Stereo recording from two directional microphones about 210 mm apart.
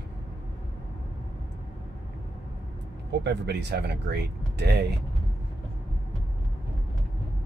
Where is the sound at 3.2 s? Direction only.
55° right (ahead or behind).